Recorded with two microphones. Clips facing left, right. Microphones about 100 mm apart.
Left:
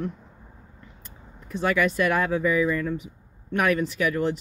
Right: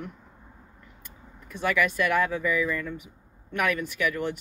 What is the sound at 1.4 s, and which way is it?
Speech, 30° left (ahead or behind).